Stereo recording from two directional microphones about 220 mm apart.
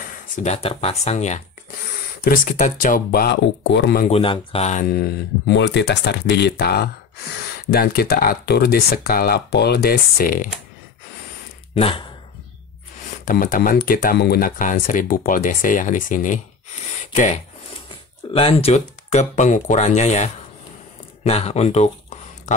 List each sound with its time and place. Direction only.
0.4 s speech: 30° left (ahead or behind); by 4.0 s 50° left (ahead or behind)
4.0 s speech: 25° left (ahead or behind)
4.8 s speech: 45° left (ahead or behind)
11.7 s speech: 25° left (ahead or behind)
13.2 s speech: 40° left (ahead or behind)